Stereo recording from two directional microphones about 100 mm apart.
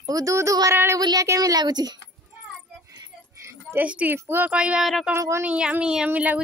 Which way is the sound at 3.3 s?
25° right (ahead or behind).